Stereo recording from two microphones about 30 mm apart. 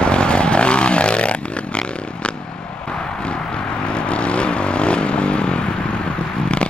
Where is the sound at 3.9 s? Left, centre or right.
Left.